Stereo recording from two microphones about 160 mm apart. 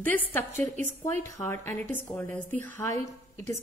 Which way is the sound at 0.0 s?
10° left (ahead or behind).